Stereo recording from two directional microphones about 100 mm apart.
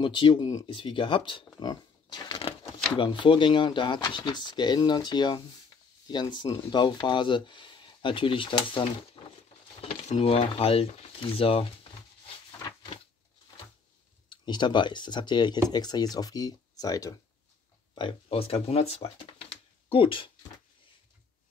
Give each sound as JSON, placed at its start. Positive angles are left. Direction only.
{"t": 0.0, "sound": "speech", "side_deg": 55}
{"t": 1.6, "sound": "a sound", "side_deg": 45}
{"t": 3.0, "sound": "speech", "side_deg": 55}
{"t": 9.2, "sound": "a sound", "side_deg": 45}
{"t": 9.8, "sound": "speech", "side_deg": 90}
{"t": 14.3, "sound": "speech", "side_deg": 50}
{"t": 17.9, "sound": "speech", "side_deg": 65}